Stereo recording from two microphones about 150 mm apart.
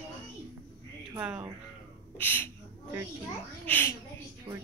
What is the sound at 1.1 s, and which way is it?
Speech, 10° right (ahead or behind).